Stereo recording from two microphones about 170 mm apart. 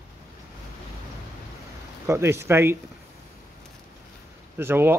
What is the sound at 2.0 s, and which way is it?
Speech, 15° right (ahead or behind).